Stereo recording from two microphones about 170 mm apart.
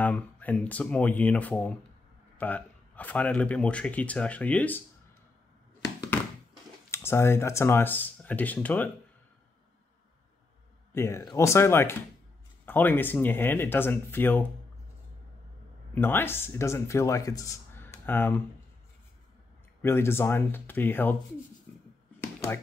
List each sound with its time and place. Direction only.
0.0 s speech: 10° left (ahead or behind)
6.9 s speech: 15° left (ahead or behind)
10.9 s speech: 15° left (ahead or behind)
15.9 s speech: 10° left (ahead or behind)
19.8 s speech: 15° left (ahead or behind)
21.7 s a sound: 10° left (ahead or behind)